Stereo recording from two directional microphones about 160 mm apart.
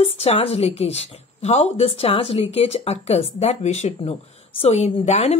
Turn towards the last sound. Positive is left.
turn(degrees=45)  # may be behind; listen again after turning